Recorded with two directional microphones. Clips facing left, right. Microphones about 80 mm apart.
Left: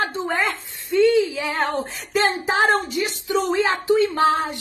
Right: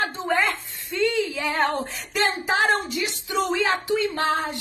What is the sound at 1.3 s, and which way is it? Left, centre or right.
Female singing, centre.